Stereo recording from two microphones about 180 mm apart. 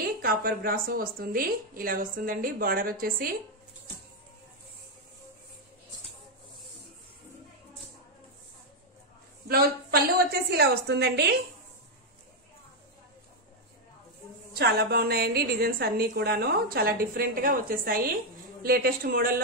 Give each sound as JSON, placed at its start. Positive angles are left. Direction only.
{"t": 0.2, "sound": "speech", "side_deg": -55}
{"t": 9.5, "sound": "a woman's voice", "side_deg": -60}
{"t": 14.5, "sound": "a woman's voice", "side_deg": -65}